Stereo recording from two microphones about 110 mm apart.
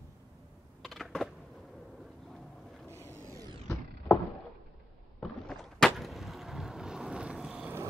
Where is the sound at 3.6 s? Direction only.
20° left (ahead or behind).